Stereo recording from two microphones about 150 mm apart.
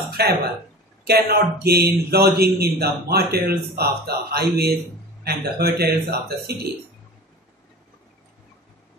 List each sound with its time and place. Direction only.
0.2 s a man's voice: 90° right